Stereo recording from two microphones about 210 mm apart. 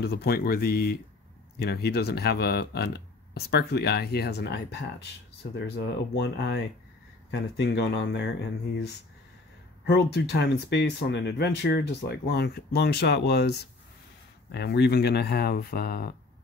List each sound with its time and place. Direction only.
0.0 s speech: 50° left (ahead or behind)